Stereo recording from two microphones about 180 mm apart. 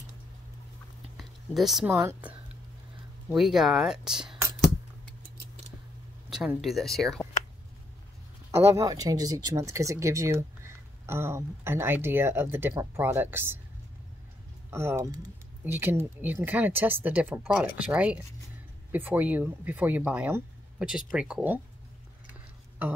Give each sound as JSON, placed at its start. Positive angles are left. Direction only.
{"t": 1.1, "sound": "a sound", "side_deg": 0}
{"t": 1.9, "sound": "speech", "side_deg": -15}
{"t": 3.3, "sound": "speech", "side_deg": 0}
{"t": 6.6, "sound": "speech", "side_deg": 0}
{"t": 8.5, "sound": "speech", "side_deg": -15}
{"t": 14.7, "sound": "speech", "side_deg": -15}